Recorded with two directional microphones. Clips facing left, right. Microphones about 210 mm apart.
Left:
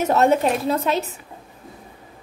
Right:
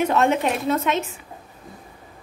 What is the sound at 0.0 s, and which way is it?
A woman's voice, 40° left (ahead or behind).